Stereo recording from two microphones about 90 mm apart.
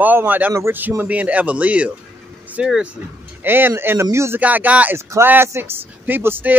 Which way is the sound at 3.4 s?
20° right (ahead or behind).